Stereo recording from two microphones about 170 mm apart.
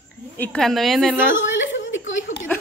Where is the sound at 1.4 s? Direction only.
90° left.